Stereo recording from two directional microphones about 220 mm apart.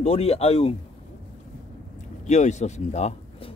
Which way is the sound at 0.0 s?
25° left (ahead or behind).